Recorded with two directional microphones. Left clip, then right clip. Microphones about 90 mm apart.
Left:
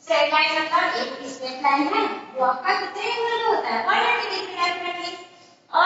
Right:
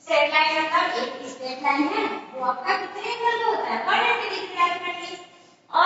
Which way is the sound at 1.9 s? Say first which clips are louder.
Left 3 dB; 35° left (ahead or behind).